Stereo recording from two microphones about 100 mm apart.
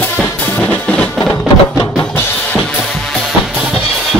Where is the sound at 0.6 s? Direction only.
15° left (ahead or behind).